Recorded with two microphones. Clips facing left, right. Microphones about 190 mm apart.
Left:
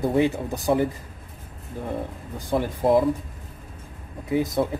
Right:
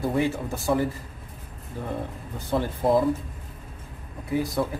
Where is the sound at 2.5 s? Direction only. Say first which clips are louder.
Left 2 dB; 10° left (ahead or behind).